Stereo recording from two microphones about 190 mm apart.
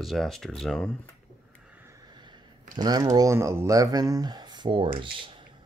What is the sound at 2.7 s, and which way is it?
Speech, 20° right (ahead or behind).